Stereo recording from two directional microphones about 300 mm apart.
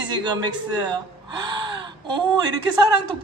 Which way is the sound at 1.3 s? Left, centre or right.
Centre.